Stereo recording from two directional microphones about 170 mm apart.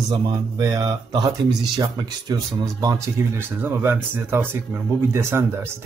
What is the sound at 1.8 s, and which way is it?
A man's voice, 25° right (ahead or behind).